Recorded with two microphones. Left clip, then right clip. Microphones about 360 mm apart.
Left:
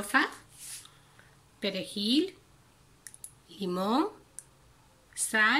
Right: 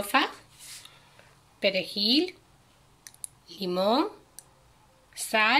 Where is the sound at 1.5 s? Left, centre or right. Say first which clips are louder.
Right 8 dB; centre.